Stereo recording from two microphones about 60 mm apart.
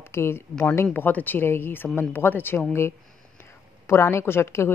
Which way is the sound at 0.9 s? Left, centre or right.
Left.